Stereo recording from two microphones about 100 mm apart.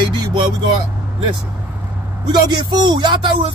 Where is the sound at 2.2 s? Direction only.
45° right (ahead or behind).